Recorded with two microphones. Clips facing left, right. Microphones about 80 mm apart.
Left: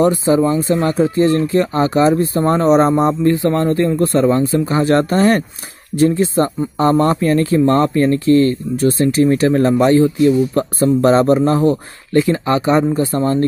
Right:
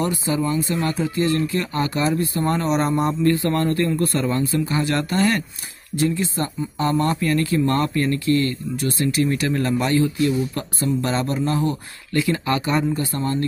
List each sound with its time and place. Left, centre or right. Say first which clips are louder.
0.0 s speech: left 10 dB; left
0.3 s speech: left 7 dB; left
0.7 s speech: left 8 dB; left